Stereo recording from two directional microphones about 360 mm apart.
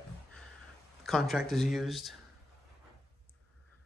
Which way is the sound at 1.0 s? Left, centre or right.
Centre.